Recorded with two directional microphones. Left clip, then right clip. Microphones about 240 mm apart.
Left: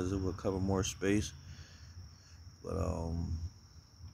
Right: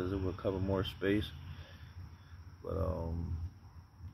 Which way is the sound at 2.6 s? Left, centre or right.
Left.